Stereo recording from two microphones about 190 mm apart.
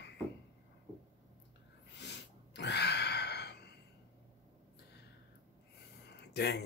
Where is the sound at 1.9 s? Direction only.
65° left (ahead or behind).